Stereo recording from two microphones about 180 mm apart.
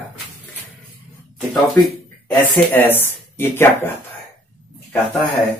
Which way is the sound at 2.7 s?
10° left (ahead or behind).